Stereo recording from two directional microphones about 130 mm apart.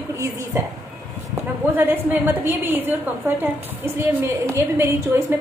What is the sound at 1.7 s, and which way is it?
A woman's voice, 15° right (ahead or behind).